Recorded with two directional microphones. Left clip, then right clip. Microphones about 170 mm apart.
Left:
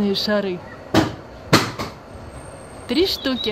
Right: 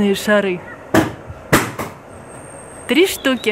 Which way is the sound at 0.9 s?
40° right (ahead or behind).